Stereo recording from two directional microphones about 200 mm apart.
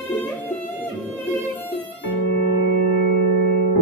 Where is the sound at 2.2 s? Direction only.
55° left (ahead or behind).